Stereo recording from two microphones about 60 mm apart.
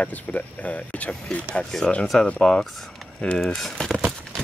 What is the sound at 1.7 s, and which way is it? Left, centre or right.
Speech, centre.